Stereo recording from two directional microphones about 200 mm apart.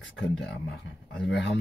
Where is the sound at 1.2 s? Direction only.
65° left (ahead or behind).